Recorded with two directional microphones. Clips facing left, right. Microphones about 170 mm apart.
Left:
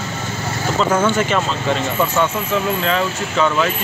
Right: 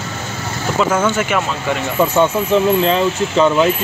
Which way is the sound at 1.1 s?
10° right (ahead or behind).